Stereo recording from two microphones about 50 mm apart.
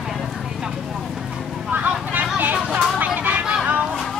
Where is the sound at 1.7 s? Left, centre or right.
Right.